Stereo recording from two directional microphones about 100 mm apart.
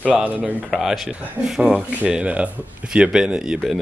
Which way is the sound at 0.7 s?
Centre (ahead or behind).